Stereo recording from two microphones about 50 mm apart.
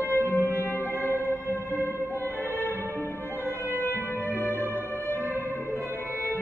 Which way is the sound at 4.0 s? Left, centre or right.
Left.